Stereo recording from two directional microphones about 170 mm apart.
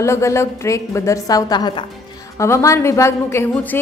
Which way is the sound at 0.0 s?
15° left (ahead or behind).